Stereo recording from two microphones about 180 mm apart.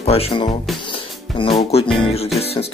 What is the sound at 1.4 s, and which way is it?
Music, 30° left (ahead or behind).